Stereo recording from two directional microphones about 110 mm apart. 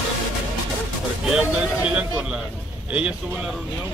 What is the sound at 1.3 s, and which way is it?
Speech, 10° right (ahead or behind).